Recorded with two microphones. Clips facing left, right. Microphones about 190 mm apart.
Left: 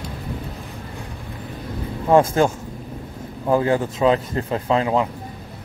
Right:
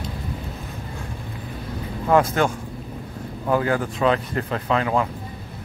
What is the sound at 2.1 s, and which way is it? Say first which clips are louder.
Speech: left 3 dB; 25° left (ahead or behind).